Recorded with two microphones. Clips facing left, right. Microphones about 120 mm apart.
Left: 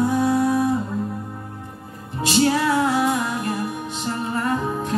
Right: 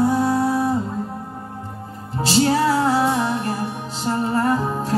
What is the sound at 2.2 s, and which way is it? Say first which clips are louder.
Music: right 1 dB; 30° right (ahead or behind).